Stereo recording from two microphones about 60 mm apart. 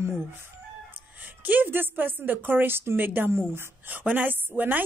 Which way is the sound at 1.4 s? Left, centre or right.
Right.